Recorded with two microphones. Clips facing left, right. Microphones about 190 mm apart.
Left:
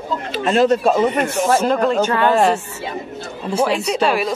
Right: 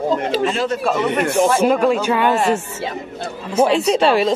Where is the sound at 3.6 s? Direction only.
30° right (ahead or behind).